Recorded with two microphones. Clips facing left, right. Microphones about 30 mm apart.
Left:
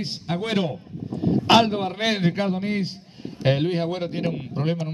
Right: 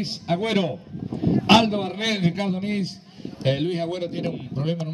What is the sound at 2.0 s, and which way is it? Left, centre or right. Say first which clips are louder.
A man's voice: left 2 dB; centre.